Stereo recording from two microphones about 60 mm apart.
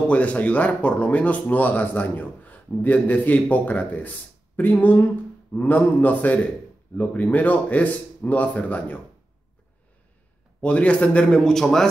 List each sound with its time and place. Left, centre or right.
0.1 s speech: left
10.6 s a man's voice: left